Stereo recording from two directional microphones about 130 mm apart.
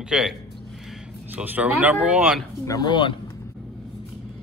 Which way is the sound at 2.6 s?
30° left (ahead or behind).